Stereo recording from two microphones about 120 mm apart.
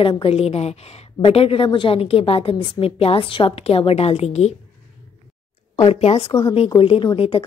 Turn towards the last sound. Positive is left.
turn(degrees=55)  # may be behind; listen again after turning